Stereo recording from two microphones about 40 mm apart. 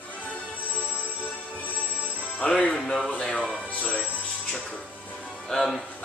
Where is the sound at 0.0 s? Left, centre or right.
Left.